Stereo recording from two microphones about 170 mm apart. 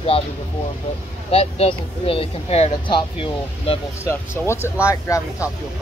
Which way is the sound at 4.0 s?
15° left (ahead or behind).